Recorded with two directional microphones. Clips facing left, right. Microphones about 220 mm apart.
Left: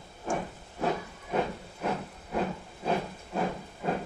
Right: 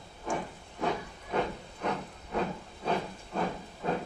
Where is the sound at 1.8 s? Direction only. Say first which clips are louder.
Left 1 dB; 5° left (ahead or behind).